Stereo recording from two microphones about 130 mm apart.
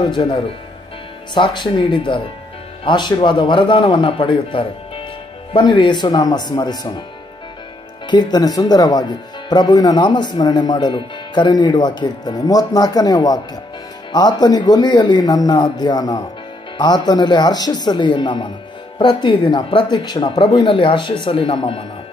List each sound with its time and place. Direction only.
0.0 s speech: 35° left (ahead or behind)
8.1 s speech: 35° left (ahead or behind)